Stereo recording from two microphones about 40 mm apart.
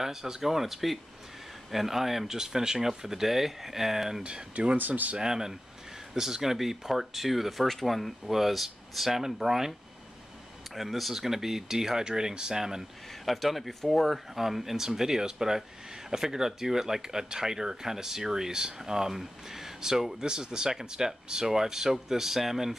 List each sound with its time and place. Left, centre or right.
0.0 s speech: centre
4.2 s speech: right
4.7 s speech: right
5.1 s speech: centre
13.2 s speech: centre